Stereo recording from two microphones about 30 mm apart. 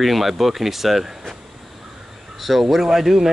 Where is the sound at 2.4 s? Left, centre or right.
Centre.